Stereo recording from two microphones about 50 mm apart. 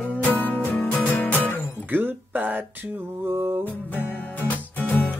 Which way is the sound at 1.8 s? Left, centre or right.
Right.